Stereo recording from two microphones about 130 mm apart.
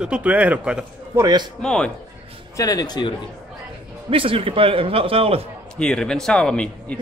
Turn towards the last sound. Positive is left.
turn(degrees=10)  # may be behind; listen again after turning